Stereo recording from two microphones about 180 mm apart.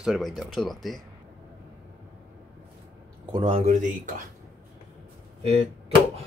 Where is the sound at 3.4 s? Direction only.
35° right (ahead or behind).